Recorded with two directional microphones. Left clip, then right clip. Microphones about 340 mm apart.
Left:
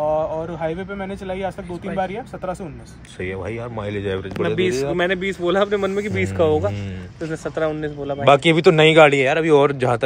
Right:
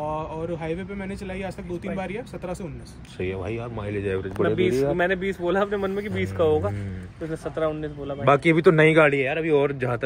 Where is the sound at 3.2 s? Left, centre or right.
Centre.